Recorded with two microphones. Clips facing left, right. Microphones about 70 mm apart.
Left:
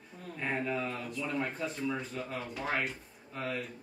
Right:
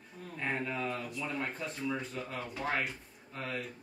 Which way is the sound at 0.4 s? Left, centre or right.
Centre.